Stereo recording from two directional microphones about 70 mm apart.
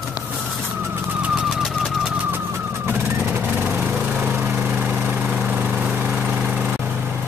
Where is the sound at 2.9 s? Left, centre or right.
Right.